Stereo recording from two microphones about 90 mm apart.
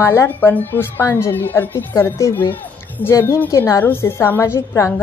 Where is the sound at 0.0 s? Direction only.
25° left (ahead or behind).